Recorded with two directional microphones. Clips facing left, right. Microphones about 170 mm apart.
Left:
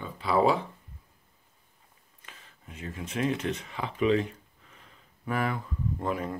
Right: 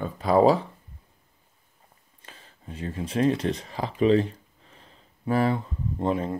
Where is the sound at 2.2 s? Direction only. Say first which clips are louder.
Right 6 dB; 30° right (ahead or behind).